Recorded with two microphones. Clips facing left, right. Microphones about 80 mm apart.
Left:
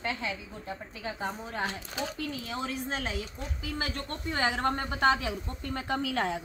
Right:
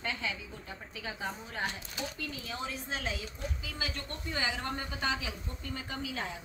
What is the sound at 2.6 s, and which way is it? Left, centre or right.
A woman's voice, left.